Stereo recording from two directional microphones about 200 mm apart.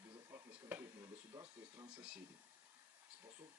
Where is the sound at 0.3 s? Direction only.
10° right (ahead or behind).